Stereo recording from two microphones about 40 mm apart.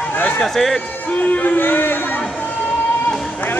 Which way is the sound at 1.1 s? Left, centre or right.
Left.